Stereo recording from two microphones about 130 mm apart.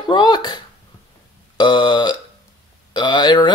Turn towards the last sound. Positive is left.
turn(degrees=35)  # may be behind; listen again after turning